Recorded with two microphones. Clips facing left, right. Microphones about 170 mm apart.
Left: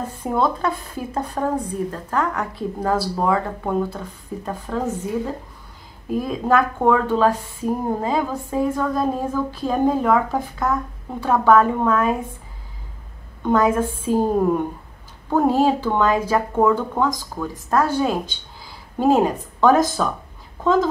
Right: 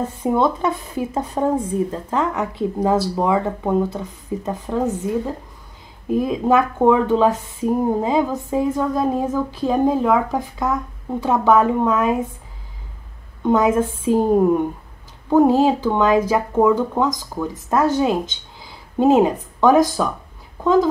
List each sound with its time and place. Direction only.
0.2 s a woman's voice: 20° right (ahead or behind)
11.1 s a woman's voice: 20° right (ahead or behind)
13.4 s a woman's voice: 20° right (ahead or behind)